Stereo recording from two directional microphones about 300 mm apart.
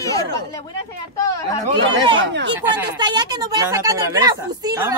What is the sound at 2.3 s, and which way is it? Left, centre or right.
Speech, right.